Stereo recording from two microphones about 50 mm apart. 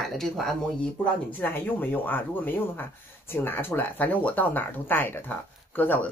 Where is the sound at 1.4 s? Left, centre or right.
Left.